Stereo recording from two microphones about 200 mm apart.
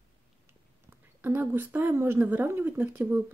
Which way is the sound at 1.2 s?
10° right (ahead or behind).